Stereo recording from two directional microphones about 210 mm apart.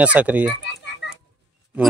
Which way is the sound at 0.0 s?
5° right (ahead or behind).